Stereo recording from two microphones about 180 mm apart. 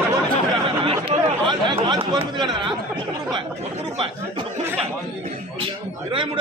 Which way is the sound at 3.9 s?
30° right (ahead or behind).